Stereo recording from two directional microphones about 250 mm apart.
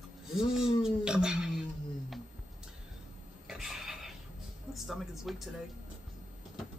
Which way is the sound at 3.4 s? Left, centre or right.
Centre.